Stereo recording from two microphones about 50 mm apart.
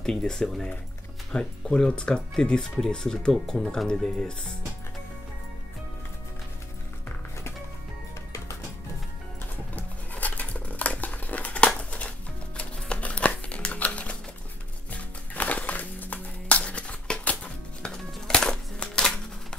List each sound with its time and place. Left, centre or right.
0.0 s speech: centre
9.8 s a sound: left
12.5 s music: left